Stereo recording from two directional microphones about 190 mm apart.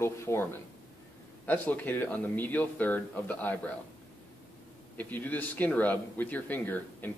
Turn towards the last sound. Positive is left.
turn(degrees=10)  # may be behind; listen again after turning